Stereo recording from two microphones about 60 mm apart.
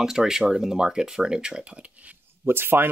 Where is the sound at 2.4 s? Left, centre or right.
Right.